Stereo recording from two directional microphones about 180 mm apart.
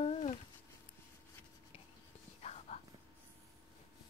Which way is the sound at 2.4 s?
35° left (ahead or behind).